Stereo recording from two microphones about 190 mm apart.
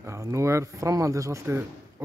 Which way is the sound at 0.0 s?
15° right (ahead or behind).